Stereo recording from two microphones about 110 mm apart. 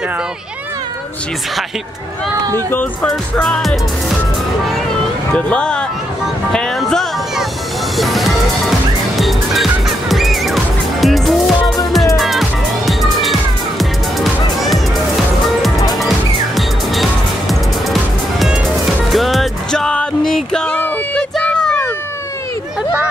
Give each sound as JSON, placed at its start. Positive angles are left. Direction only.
{"t": 2.7, "sound": "speech", "side_deg": 15}
{"t": 5.3, "sound": "speech", "side_deg": 10}
{"t": 6.5, "sound": "music", "side_deg": 5}
{"t": 16.5, "sound": "music", "side_deg": 0}
{"t": 19.1, "sound": "music", "side_deg": 0}
{"t": 21.4, "sound": "a sound", "side_deg": 10}